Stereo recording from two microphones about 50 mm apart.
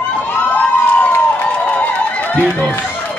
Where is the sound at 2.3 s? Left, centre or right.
Left.